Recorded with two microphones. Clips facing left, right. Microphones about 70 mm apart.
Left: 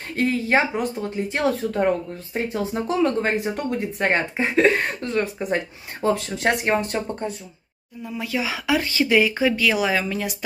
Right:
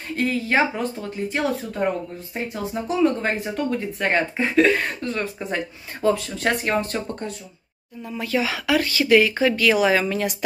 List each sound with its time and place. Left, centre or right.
0.1 s speech: left
2.3 s speech: left
3.3 s speech: left
8.0 s speech: centre
9.3 s speech: centre